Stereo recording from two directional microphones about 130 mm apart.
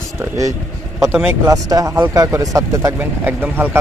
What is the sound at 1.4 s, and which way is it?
Speech, 25° right (ahead or behind).